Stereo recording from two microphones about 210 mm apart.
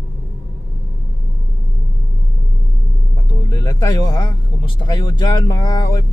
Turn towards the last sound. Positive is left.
turn(degrees=20)  # may be behind; listen again after turning